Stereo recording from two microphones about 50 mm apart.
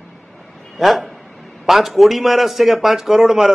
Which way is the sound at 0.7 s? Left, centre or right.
Centre.